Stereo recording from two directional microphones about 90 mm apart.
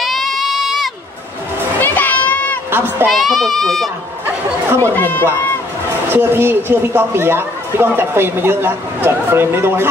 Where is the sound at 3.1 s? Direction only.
Centre (ahead or behind).